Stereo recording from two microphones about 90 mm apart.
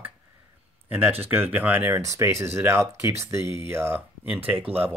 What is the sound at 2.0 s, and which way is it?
Speech, 35° right (ahead or behind).